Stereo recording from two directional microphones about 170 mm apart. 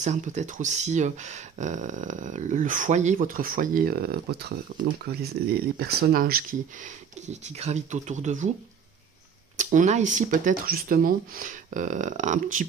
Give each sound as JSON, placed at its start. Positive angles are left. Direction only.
{"t": 0.0, "sound": "speech", "side_deg": -45}
{"t": 7.2, "sound": "speech", "side_deg": -40}
{"t": 9.6, "sound": "speech", "side_deg": -45}